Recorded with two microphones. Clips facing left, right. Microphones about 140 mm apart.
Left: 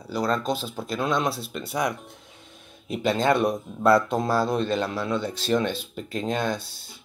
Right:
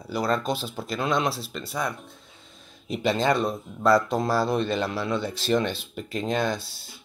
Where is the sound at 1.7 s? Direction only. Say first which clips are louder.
Left 3 dB; 15° left (ahead or behind).